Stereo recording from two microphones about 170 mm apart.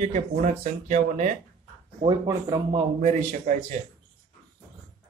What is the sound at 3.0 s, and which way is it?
Speech, 45° right (ahead or behind).